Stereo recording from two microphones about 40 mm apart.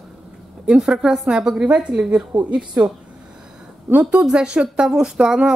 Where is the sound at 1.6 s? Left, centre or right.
Right.